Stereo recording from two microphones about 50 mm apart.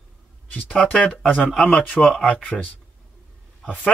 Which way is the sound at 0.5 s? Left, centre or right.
Left.